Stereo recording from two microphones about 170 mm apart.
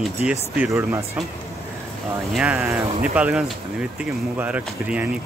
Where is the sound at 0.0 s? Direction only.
5° right (ahead or behind).